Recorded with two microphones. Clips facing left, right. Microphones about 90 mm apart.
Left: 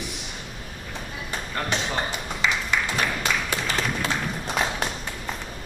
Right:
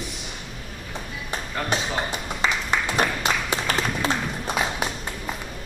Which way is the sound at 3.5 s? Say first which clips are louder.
Right 2 dB; 25° right (ahead or behind).